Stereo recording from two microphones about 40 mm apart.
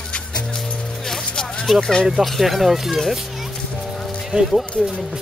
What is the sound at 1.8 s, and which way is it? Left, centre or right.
Speech, centre.